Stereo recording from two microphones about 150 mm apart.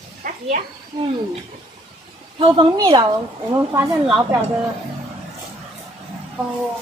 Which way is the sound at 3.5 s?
20° right (ahead or behind).